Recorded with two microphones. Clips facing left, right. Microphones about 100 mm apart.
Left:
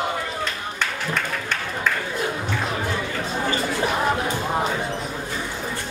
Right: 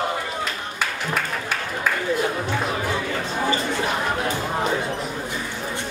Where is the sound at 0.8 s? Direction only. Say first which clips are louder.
Right 1 dB; 5° right (ahead or behind).